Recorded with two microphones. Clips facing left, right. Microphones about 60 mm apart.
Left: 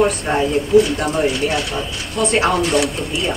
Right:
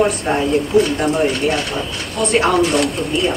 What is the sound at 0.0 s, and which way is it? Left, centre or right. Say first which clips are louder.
Speech: even; centre.